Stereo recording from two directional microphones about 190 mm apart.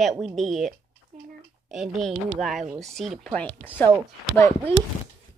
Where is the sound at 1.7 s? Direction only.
Centre (ahead or behind).